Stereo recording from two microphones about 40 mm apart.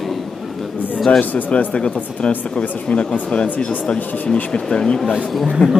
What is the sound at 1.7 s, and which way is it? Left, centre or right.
Speech, left.